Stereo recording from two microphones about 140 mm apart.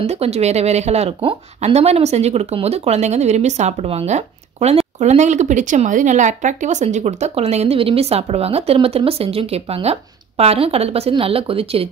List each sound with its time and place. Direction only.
0.0 s speech: 50° right (ahead or behind)